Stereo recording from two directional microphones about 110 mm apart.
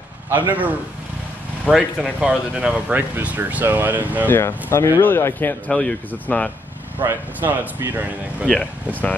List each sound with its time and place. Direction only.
0.3 s speech: 15° right (ahead or behind)
4.3 s speech: 20° left (ahead or behind)
5.7 s speech: 10° left (ahead or behind)
7.0 s speech: 20° right (ahead or behind)
8.5 s speech: 5° left (ahead or behind)